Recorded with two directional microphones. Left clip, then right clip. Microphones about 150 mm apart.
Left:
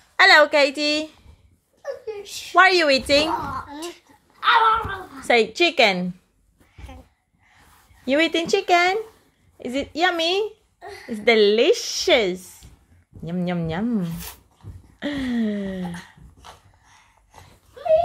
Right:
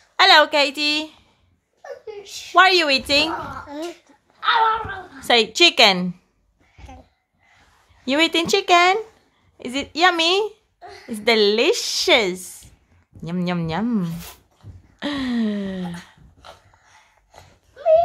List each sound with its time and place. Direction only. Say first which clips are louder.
0.2 s a woman's voice: even; 5° right (ahead or behind)
1.8 s a sound: left 4 dB; 20° right (ahead or behind)
2.5 s a woman's voice: right 1 dB; centre (ahead or behind)
3.6 s a sound: right 3 dB; 45° right (ahead or behind)
4.4 s a woman's voice: left 1 dB; 10° right (ahead or behind)
8.0 s a woman's voice: right 1 dB; 10° right (ahead or behind)
14.0 s speech: right 1 dB; 25° right (ahead or behind)
15.0 s a woman's voice: right 2 dB; 10° right (ahead or behind)
16.3 s a sound: right 2 dB; 25° right (ahead or behind)